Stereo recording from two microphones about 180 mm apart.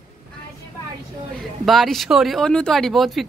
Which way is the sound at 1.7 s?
Centre (ahead or behind).